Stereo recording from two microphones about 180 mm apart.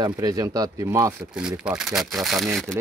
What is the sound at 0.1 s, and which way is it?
Speech, 20° right (ahead or behind).